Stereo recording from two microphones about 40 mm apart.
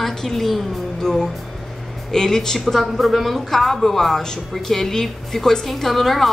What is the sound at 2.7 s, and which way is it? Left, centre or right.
A woman's voice, centre.